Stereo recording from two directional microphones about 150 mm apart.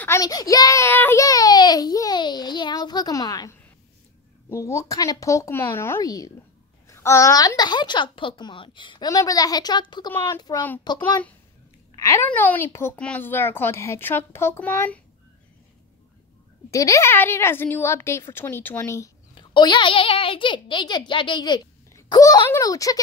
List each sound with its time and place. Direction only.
0.0 s a child's voice: 20° left (ahead or behind)
16.7 s speech: 20° left (ahead or behind)
19.3 s a child's voice: 30° left (ahead or behind)